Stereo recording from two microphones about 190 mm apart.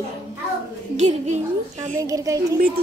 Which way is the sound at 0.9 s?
40° right (ahead or behind).